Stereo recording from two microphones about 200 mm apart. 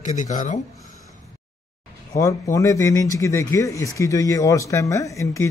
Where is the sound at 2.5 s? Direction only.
15° left (ahead or behind).